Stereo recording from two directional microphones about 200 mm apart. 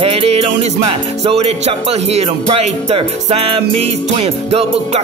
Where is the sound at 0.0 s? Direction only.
30° right (ahead or behind).